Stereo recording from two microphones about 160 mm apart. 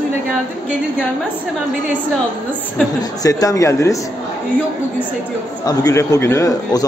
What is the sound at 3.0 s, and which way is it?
A man's voice, 25° left (ahead or behind).